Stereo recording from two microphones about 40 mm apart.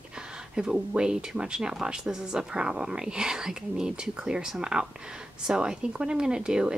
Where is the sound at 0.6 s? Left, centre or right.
Centre.